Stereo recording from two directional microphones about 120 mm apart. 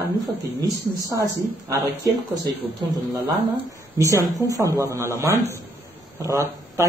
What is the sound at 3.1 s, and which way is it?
Speech, 20° right (ahead or behind).